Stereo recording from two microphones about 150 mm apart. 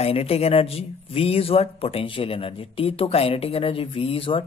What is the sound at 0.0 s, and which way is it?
Speech, 40° left (ahead or behind).